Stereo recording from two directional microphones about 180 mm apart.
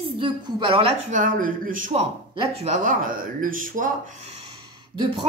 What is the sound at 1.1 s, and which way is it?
Speech, 50° right (ahead or behind).